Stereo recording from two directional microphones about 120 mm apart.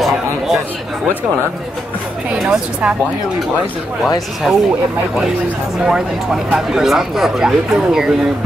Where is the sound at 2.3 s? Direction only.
10° right (ahead or behind).